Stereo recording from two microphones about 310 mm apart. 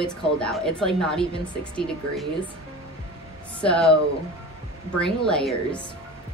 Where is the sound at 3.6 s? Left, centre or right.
Centre.